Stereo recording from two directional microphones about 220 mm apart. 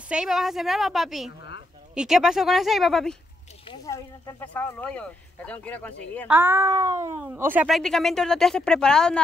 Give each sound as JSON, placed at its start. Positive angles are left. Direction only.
{"t": 0.1, "sound": "speech", "side_deg": 0}
{"t": 3.6, "sound": "speech", "side_deg": 15}
{"t": 6.2, "sound": "speech", "side_deg": -10}